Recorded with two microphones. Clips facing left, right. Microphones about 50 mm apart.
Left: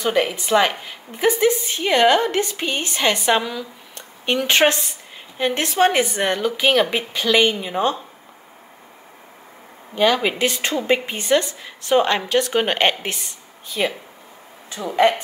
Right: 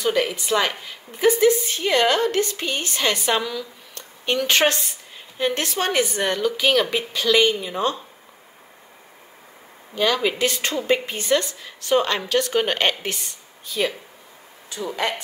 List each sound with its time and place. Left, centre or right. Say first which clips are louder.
0.0 s a woman's voice: left 2 dB; left
9.9 s a woman's voice: left 3 dB; left
14.7 s a woman's voice: left 8 dB; left